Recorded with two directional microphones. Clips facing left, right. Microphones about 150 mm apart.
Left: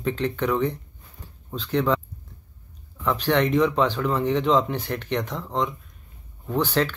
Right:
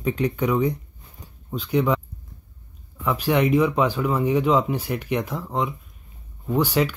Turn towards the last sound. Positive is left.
turn(degrees=-10)  # may be behind; listen again after turning